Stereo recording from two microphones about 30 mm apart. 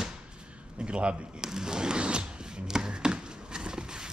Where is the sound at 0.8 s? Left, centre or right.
Right.